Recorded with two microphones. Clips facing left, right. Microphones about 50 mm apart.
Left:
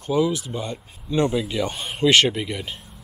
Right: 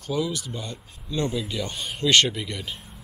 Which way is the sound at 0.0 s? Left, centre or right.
Centre.